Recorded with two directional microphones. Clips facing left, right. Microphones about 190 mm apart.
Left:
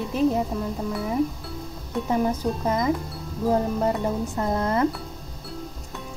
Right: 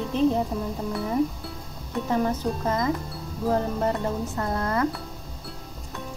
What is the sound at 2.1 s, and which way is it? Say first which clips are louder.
Speech: left 1 dB; 10° left (ahead or behind).